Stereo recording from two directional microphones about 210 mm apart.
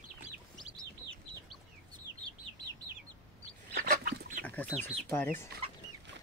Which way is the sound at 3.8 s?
45° right (ahead or behind).